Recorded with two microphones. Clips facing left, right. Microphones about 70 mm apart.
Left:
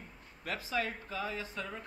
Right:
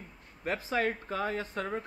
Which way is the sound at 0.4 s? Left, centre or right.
Right.